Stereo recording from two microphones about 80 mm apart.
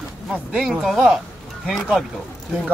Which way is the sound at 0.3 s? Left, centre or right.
Centre.